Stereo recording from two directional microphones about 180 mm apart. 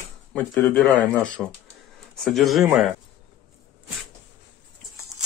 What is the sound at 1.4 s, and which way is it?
Speech, 5° right (ahead or behind).